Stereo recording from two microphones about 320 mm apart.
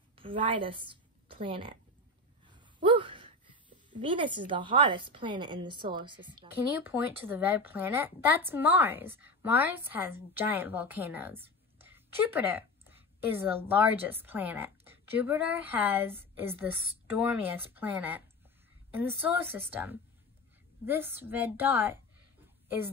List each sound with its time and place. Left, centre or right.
0.2 s a woman's voice: centre
2.4 s a sound: centre
3.9 s a woman's voice: centre